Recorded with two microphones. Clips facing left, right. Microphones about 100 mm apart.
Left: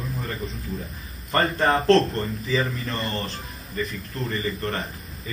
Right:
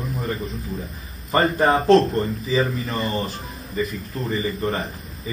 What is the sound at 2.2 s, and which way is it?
Speech, 30° right (ahead or behind).